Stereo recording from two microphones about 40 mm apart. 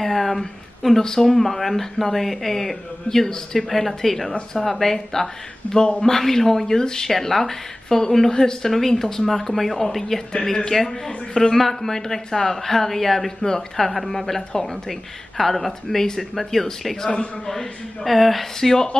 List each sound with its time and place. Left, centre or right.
0.0 s speech: centre
10.3 s speech: centre